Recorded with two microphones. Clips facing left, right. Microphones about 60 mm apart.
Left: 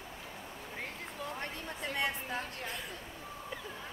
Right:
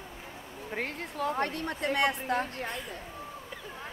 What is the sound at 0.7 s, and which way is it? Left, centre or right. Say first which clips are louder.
A woman's voice: right 9 dB; right.